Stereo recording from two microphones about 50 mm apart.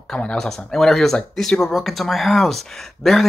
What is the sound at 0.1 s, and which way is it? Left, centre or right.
Speech, centre.